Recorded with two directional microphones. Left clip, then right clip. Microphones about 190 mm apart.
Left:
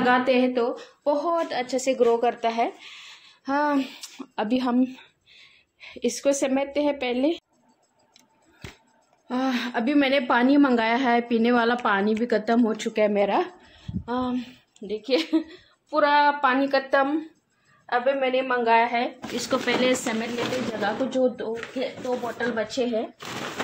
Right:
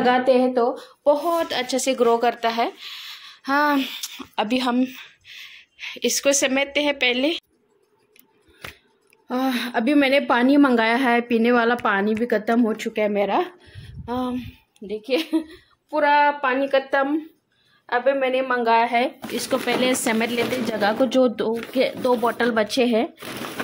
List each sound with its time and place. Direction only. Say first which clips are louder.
0.2 s speech: right 4 dB; 10° right (ahead or behind); by 7.4 s 15° left (ahead or behind)
9.3 s a woman's voice: right 3 dB; 15° right (ahead or behind)
17.8 s a woman's voice: right 3 dB; 15° right (ahead or behind)
19.3 s a woman's voice: even; 5° right (ahead or behind)
20.8 s speech: right 6 dB; 45° right (ahead or behind)